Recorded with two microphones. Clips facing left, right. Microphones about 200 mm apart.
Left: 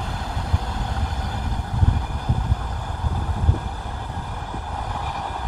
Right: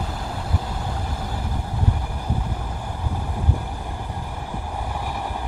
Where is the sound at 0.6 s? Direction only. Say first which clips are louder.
Even; 10° right (ahead or behind).